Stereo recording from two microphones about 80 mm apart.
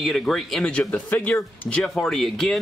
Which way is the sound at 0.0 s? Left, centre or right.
Centre.